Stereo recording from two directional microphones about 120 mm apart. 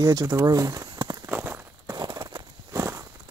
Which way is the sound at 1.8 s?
35° right (ahead or behind).